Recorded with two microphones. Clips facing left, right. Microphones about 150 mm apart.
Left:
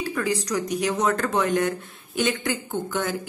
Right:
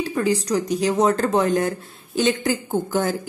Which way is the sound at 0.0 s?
25° right (ahead or behind).